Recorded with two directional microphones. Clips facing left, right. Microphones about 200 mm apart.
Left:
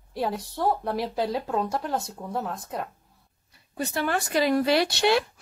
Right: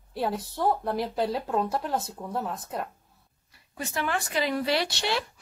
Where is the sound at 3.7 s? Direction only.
35° left (ahead or behind); by 5.2 s 55° left (ahead or behind).